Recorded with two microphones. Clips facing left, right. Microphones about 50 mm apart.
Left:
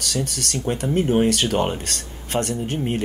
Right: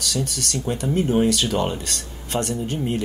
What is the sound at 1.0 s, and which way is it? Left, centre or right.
Speech, left.